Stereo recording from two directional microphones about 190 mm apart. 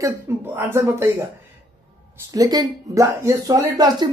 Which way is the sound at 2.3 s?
20° right (ahead or behind).